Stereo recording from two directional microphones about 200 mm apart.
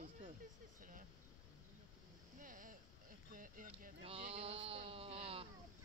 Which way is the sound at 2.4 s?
40° right (ahead or behind).